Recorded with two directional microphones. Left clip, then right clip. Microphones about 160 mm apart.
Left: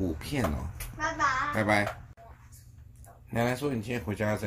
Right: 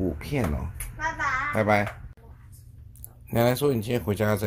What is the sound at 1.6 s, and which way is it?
Speech, 40° right (ahead or behind).